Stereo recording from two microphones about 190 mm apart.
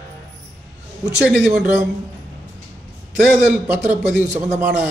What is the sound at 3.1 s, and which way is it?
A man's voice, 5° right (ahead or behind).